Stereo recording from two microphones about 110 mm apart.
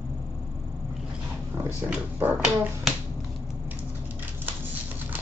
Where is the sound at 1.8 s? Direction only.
15° right (ahead or behind).